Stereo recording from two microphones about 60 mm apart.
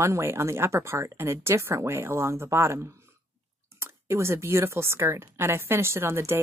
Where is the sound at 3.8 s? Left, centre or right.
Right.